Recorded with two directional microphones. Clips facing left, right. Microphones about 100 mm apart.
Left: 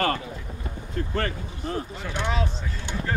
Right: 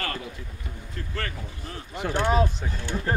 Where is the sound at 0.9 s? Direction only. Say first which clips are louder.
Left 6 dB; 35° left (ahead or behind).